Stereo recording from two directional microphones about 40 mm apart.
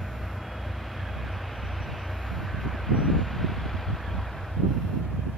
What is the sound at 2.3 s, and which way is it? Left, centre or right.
Vehicle, centre.